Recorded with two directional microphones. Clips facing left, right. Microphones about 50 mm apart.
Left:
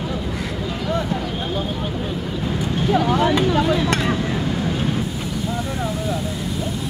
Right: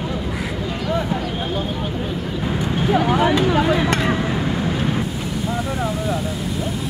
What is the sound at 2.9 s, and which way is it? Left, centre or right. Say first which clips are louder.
Speech: right 1 dB; centre.